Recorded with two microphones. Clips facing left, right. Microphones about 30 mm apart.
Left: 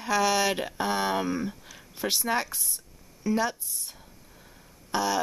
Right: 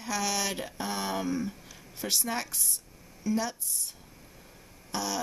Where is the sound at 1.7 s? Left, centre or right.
Centre.